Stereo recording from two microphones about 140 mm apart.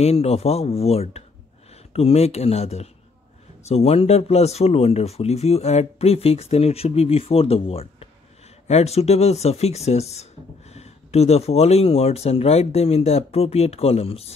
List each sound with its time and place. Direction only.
0.0 s speech: 50° left (ahead or behind)